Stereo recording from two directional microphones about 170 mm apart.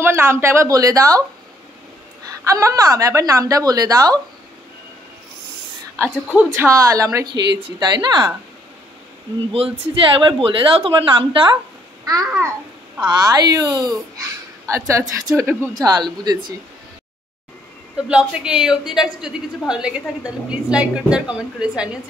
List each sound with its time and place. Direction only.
0.0 s a woman's voice: 15° right (ahead or behind)
2.4 s a woman's voice: 20° right (ahead or behind)
5.9 s a woman's voice: 5° right (ahead or behind); by 7.2 s 20° right (ahead or behind)
7.3 s speech: 90° right
7.8 s a woman's voice: 25° right (ahead or behind)
10.1 s a woman's voice: 30° right (ahead or behind)
12.0 s a child's voice: 20° right (ahead or behind)
18.0 s a man's voice: 5° right (ahead or behind)